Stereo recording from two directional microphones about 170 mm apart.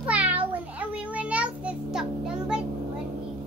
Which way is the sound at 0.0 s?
10° right (ahead or behind).